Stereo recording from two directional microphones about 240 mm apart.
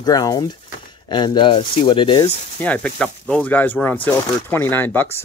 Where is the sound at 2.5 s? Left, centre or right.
Centre.